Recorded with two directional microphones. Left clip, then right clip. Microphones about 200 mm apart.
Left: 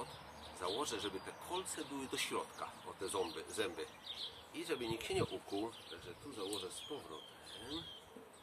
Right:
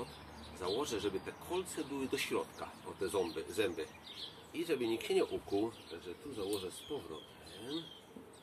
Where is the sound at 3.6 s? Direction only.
Centre (ahead or behind).